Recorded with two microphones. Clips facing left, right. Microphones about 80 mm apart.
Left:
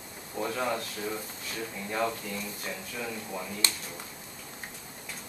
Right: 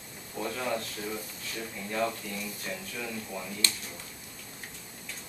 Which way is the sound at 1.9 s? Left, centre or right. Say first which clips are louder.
Even; centre.